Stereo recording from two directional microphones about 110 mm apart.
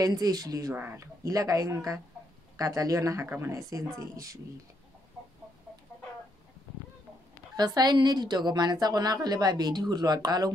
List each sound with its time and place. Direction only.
0.0 s a woman's voice: 35° right (ahead or behind)
7.5 s a woman's voice: 40° right (ahead or behind)